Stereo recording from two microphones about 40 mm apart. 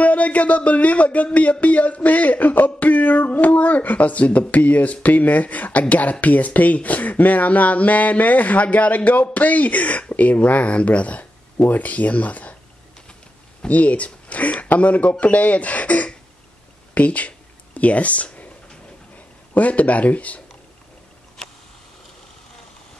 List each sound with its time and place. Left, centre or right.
0.0 s speech: left
13.7 s speech: left
19.5 s speech: left